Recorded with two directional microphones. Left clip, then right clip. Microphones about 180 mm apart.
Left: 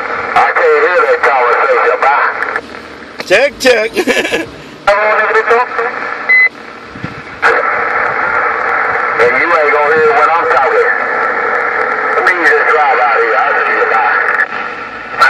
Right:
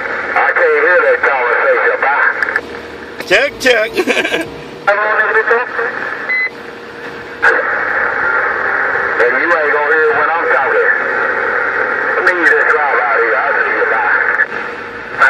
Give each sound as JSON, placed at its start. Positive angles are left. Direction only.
{"t": 0.3, "sound": "radio", "side_deg": 45}
{"t": 3.3, "sound": "speech", "side_deg": 30}
{"t": 4.8, "sound": "a sound", "side_deg": 45}
{"t": 7.4, "sound": "radio", "side_deg": 40}